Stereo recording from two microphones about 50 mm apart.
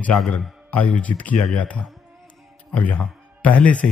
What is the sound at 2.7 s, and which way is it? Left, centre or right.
Speech, left.